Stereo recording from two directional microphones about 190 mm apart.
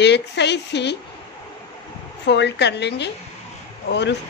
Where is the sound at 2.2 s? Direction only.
65° left (ahead or behind).